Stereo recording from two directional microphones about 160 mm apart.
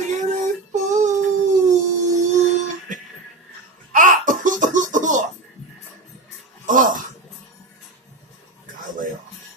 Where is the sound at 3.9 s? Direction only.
55° right (ahead or behind).